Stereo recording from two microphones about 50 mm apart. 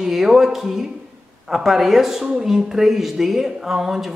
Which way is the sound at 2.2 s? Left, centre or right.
Centre.